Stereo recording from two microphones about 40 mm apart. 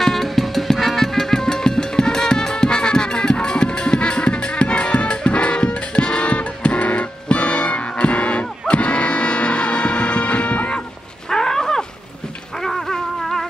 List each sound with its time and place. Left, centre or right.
0.0 s music: centre; by 10.7 s left
11.2 s a sound: centre
12.5 s music: centre